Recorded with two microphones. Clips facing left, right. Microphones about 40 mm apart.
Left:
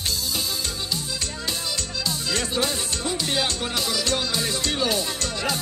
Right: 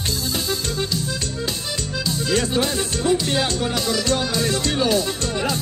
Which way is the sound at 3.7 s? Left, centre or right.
Centre.